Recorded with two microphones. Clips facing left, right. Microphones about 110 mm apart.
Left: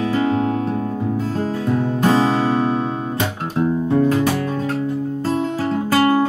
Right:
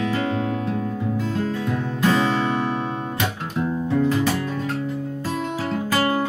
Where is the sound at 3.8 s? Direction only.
50° left (ahead or behind).